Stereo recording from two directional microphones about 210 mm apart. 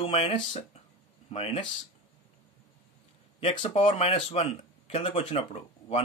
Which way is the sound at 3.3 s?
30° left (ahead or behind).